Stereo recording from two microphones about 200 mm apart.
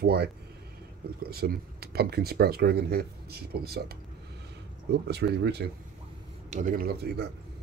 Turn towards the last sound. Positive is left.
turn(degrees=-50)  # may be behind; listen again after turning